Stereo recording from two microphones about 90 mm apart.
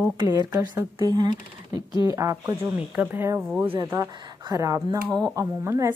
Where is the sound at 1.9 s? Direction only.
40° right (ahead or behind).